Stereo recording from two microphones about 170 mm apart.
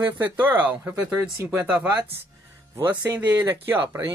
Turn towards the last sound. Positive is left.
turn(degrees=-15)  # may be behind; listen again after turning